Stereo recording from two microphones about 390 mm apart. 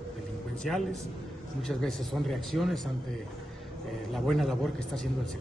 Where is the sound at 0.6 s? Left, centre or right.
Centre.